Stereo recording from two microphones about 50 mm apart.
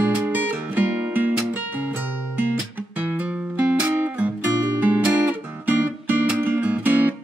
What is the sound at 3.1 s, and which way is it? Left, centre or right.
Music, right.